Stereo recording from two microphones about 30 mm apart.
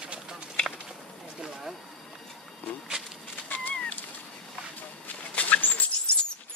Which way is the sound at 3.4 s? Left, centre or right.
Left.